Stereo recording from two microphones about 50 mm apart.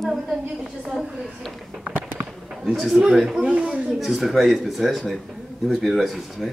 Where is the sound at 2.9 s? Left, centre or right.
Centre.